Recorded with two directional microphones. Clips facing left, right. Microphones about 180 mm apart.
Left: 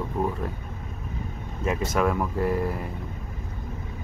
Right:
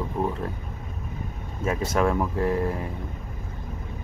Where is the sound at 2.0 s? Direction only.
5° left (ahead or behind).